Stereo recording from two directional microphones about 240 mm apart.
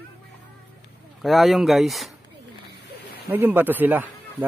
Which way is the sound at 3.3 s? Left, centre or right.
Centre.